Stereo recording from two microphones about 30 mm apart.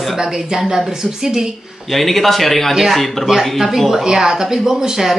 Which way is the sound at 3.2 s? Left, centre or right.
Centre.